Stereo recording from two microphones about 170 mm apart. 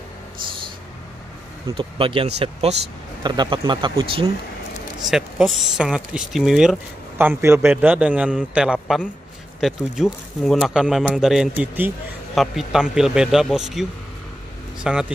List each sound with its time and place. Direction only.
1.8 s speech: 30° right (ahead or behind)
5.1 s speech: centre (ahead or behind)